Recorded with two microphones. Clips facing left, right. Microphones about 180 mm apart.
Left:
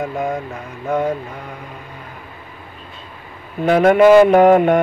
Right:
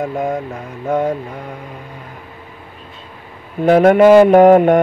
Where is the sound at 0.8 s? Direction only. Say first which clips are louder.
Right 2 dB; 35° right (ahead or behind).